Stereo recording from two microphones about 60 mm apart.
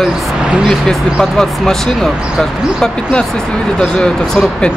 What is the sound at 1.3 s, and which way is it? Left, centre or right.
Speech, centre.